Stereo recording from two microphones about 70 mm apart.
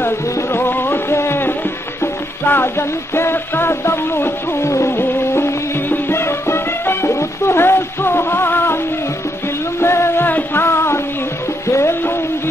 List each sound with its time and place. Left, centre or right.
0.0 s music: left
9.8 s music: left